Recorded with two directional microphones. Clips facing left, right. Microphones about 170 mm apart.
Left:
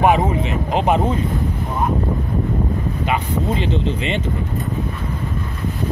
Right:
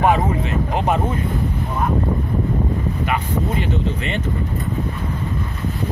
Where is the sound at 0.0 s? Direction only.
20° left (ahead or behind).